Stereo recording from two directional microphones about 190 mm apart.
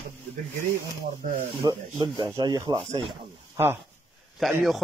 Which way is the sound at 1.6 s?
20° right (ahead or behind).